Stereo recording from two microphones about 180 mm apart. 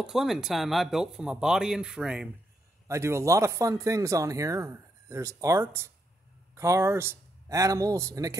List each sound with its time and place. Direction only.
0.0 s speech: centre (ahead or behind)
2.9 s speech: 15° right (ahead or behind)